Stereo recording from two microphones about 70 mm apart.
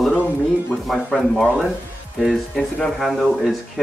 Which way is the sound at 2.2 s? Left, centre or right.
Centre.